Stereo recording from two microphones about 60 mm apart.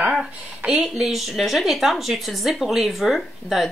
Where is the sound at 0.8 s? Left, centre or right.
Centre.